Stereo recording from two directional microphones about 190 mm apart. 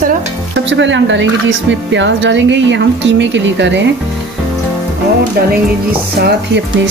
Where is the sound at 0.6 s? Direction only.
75° right (ahead or behind).